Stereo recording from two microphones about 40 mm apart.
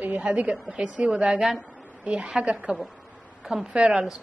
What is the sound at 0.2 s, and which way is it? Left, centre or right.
A woman's voice, right.